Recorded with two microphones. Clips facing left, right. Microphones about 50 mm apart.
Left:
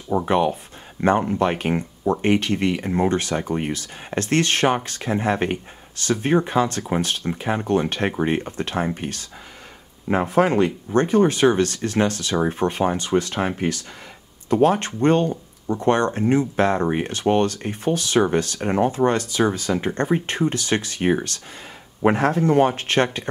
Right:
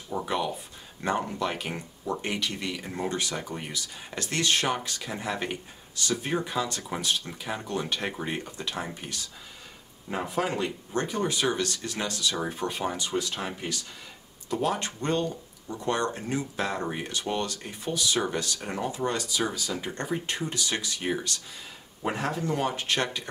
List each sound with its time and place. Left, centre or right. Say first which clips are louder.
0.1 s speech: left 10 dB; left
14.5 s speech: left 10 dB; left